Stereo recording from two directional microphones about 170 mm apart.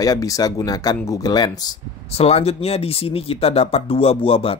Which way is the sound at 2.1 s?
35° left (ahead or behind).